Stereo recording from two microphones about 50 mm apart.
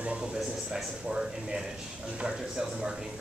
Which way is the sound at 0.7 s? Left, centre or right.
Centre.